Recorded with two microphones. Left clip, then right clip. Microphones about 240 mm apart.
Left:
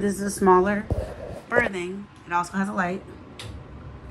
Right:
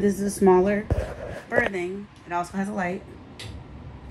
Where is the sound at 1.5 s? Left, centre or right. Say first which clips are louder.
Left 1 dB; left.